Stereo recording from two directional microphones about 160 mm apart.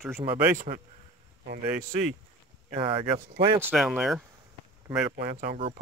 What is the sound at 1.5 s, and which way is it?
Speech, 85° right.